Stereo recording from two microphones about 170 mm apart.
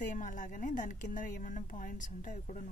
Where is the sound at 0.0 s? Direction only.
50° left (ahead or behind).